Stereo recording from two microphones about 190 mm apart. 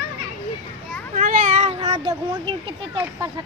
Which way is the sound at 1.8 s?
25° right (ahead or behind).